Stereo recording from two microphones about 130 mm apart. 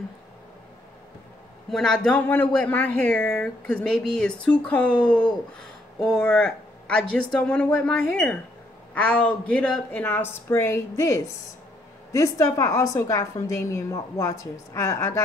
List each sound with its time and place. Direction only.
1.7 s a woman's voice: 5° left (ahead or behind); by 15.2 s 25° left (ahead or behind)